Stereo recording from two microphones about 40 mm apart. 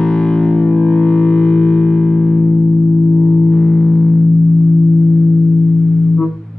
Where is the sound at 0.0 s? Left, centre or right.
Centre.